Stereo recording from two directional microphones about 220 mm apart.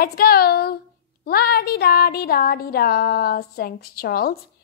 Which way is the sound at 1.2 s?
45° left (ahead or behind).